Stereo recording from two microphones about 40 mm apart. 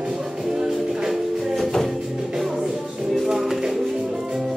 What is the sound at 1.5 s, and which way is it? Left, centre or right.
Music, centre.